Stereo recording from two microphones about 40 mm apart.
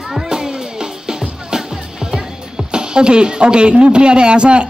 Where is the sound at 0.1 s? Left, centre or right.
Centre.